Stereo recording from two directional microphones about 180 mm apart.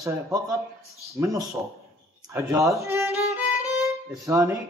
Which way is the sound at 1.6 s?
15° right (ahead or behind).